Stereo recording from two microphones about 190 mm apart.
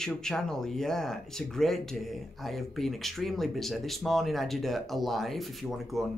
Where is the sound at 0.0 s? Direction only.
5° left (ahead or behind).